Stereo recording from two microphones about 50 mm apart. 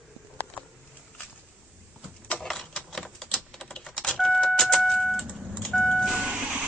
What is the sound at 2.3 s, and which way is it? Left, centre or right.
Typewriter, centre.